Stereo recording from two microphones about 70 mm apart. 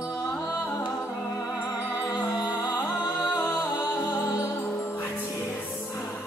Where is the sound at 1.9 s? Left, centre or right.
Left.